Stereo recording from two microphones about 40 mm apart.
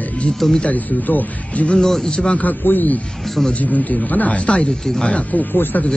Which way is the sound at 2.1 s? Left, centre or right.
Left.